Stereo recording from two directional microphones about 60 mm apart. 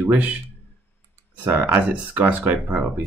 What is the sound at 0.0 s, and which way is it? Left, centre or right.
Speech, right.